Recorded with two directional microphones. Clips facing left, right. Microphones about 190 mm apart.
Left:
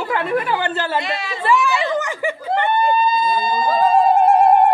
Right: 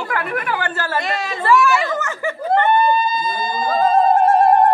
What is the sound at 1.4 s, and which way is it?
Speech, 15° left (ahead or behind).